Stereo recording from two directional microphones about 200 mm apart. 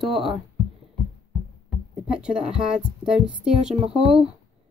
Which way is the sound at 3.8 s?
25° right (ahead or behind).